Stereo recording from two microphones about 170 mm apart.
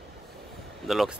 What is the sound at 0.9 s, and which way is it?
Speech, centre (ahead or behind).